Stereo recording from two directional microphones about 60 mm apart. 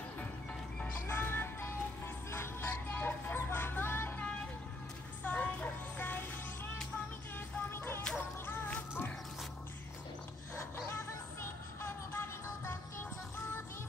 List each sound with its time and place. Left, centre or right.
0.2 s music: centre
1.0 s music: left
3.3 s vehicle: left
5.2 s vehicle: left
7.3 s music: left
10.5 s a sound: left
11.8 s music: left